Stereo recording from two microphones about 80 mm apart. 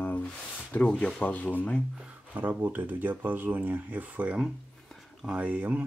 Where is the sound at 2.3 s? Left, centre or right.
Right.